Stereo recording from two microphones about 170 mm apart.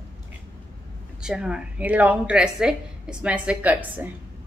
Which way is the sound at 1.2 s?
5° right (ahead or behind).